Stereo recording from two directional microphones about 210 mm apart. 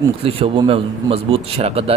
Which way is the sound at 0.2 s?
25° right (ahead or behind).